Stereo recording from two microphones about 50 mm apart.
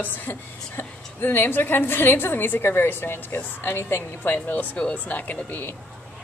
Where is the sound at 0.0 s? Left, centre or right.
Left.